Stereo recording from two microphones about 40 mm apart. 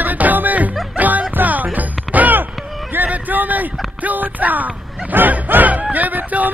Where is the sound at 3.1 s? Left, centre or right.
Right.